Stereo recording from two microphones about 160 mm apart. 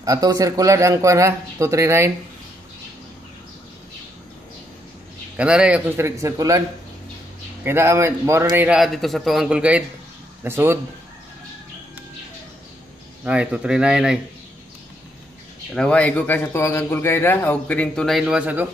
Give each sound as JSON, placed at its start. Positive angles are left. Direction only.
{"t": 0.0, "sound": "a man's voice", "side_deg": -20}
{"t": 5.4, "sound": "speech", "side_deg": -5}
{"t": 7.6, "sound": "speech", "side_deg": -15}
{"t": 13.2, "sound": "speech", "side_deg": -10}
{"t": 15.7, "sound": "a man's voice", "side_deg": 5}